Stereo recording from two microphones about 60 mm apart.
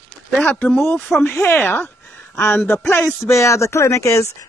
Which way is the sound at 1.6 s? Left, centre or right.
Left.